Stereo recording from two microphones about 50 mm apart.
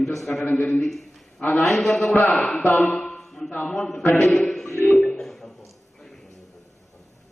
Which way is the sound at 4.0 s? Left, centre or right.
Left.